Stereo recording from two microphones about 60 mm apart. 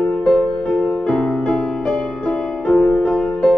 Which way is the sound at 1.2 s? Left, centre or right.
Centre.